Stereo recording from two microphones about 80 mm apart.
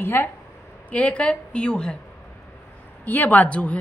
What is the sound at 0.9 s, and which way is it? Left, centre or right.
Speech, centre.